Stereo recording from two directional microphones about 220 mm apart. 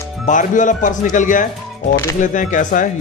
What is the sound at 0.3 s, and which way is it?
Speech, 35° left (ahead or behind).